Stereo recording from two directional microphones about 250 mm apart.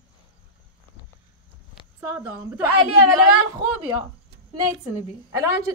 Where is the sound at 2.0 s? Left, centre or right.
Centre.